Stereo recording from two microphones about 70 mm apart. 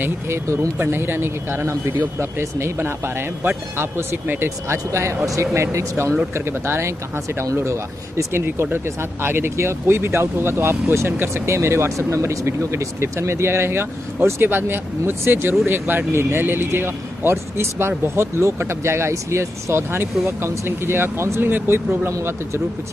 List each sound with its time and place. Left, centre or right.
0.0 s speech: right
8.2 s speech: right